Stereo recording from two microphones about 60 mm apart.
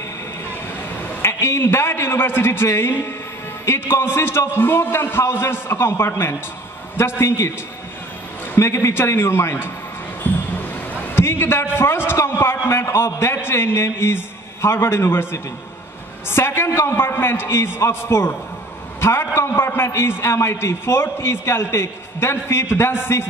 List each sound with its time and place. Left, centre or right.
1.2 s a man's voice: left
8.5 s a man's voice: left
10.3 s basketball bounce: left
11.1 s a man's voice: left
16.3 s a man's voice: left